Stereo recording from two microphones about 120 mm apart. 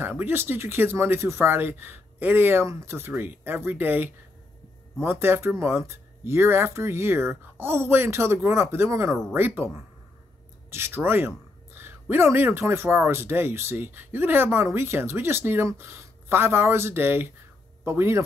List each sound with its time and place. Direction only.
0.2 s speech: 20° right (ahead or behind)